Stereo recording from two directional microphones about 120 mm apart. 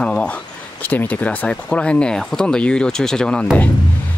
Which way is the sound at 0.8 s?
15° left (ahead or behind).